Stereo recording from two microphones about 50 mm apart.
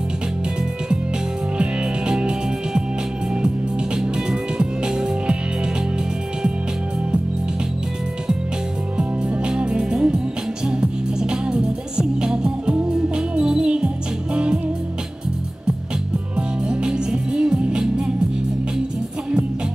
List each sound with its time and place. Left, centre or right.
1.6 s music: centre
8.9 s music: centre
16.3 s music: centre